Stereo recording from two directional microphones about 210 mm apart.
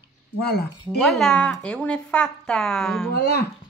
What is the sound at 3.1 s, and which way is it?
Speech, 50° left (ahead or behind).